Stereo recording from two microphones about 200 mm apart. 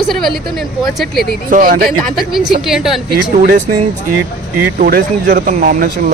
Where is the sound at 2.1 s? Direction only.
Centre (ahead or behind).